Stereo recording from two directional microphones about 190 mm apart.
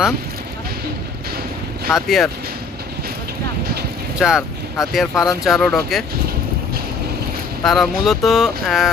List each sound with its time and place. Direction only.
1.9 s speech: centre (ahead or behind)
4.2 s speech: 5° right (ahead or behind)
7.6 s speech: centre (ahead or behind)